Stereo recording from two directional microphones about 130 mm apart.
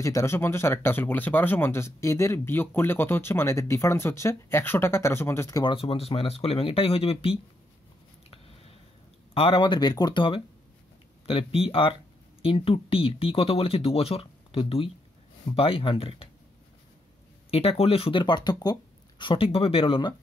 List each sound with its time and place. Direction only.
0.0 s speech: 25° left (ahead or behind)
5.6 s speech: 40° left (ahead or behind)
9.3 s speech: 45° left (ahead or behind)
17.5 s speech: 50° left (ahead or behind)